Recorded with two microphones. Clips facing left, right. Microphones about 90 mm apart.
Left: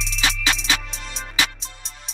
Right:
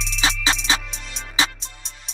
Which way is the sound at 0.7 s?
30° right (ahead or behind).